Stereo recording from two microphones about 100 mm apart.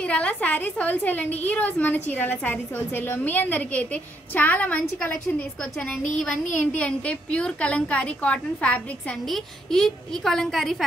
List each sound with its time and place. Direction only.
0.0 s a woman's voice: 10° left (ahead or behind)